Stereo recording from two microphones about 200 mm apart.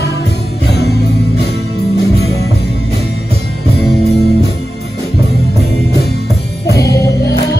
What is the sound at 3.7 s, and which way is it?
Music, 50° left (ahead or behind).